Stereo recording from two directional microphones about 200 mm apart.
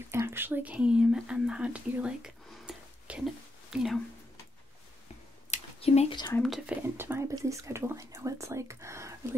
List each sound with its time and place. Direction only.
0.1 s speech: 10° right (ahead or behind)
5.5 s a sound: 30° left (ahead or behind)
6.3 s speech: centre (ahead or behind)